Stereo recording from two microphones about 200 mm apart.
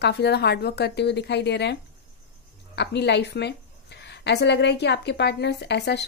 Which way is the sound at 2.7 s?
60° left (ahead or behind).